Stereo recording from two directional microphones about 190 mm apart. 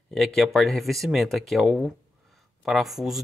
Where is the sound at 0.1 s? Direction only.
Centre (ahead or behind).